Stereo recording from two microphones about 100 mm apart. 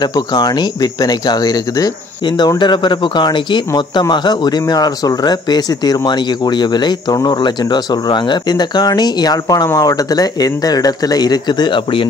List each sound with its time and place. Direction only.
0.0 s speech: 45° left (ahead or behind)